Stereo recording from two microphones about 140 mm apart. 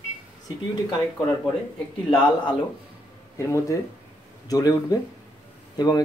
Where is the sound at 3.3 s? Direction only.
20° left (ahead or behind).